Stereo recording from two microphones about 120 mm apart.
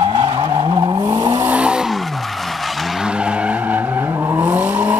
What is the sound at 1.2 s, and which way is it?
Vehicle, 15° right (ahead or behind).